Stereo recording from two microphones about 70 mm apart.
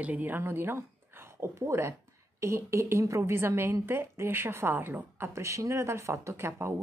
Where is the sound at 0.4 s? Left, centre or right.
Right.